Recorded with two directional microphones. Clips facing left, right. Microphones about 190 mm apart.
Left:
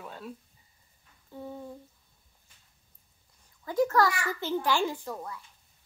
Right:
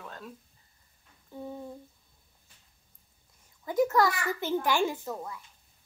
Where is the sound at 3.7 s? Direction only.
15° right (ahead or behind).